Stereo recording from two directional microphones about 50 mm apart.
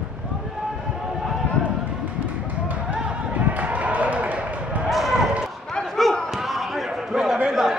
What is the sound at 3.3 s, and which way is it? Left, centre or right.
Basketball bounce, right.